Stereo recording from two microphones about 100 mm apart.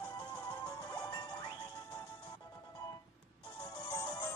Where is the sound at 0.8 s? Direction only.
40° left (ahead or behind).